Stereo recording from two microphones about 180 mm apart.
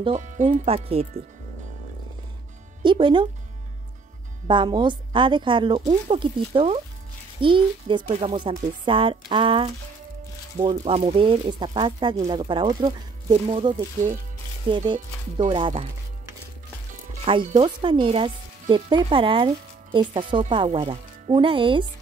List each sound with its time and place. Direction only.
0.0 s speech: 40° right (ahead or behind)
0.5 s speech: 30° right (ahead or behind)
2.8 s speech: 25° right (ahead or behind)
4.5 s speech: 25° right (ahead or behind)
14.9 s speech: 25° right (ahead or behind)
17.6 s speech: 25° right (ahead or behind)